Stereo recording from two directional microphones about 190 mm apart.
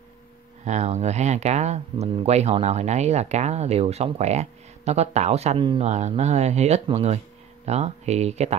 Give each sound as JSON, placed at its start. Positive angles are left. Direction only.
{"t": 0.7, "sound": "speech", "side_deg": -35}